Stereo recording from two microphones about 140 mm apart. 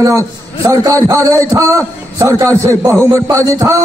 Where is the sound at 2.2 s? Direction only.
20° right (ahead or behind).